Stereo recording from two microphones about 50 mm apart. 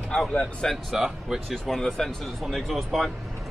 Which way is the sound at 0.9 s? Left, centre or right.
Centre.